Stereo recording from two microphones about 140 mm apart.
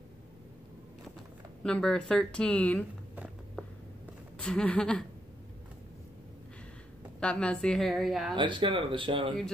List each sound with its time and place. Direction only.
1.6 s speech: 5° left (ahead or behind)
4.4 s speech: 5° left (ahead or behind)
7.2 s a woman's voice: 5° left (ahead or behind)
8.4 s speech: 35° right (ahead or behind)